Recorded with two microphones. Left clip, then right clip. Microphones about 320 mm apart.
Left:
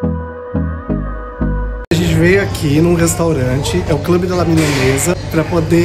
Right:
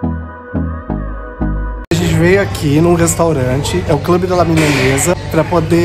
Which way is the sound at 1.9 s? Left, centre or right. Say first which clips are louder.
Right 1 dB; centre.